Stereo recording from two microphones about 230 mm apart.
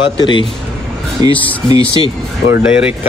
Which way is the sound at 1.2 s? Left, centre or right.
Centre.